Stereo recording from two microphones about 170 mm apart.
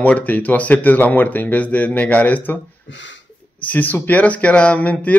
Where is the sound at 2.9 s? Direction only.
90° left.